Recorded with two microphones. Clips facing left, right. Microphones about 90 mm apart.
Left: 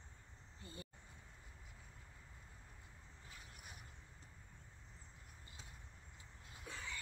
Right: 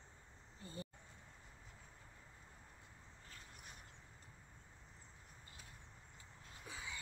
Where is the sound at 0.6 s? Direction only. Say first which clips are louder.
Right 4 dB; 30° right (ahead or behind).